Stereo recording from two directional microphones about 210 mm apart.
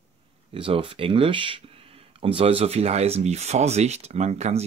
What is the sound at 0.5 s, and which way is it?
Speech, 25° right (ahead or behind).